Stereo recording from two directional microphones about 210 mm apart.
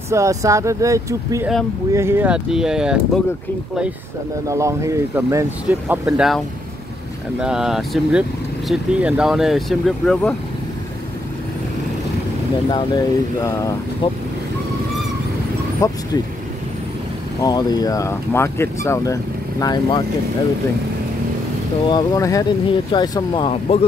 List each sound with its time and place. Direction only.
0.1 s speech: 15° right (ahead or behind)
4.5 s speech: 15° right (ahead or behind); by 10.3 s centre (ahead or behind)
12.6 s speech: 20° left (ahead or behind)
15.8 s speech: 15° left (ahead or behind)
17.4 s speech: 20° left (ahead or behind)
21.8 s speech: 15° left (ahead or behind)